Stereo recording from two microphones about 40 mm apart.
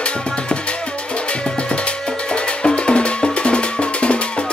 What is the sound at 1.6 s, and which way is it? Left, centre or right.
Music, left.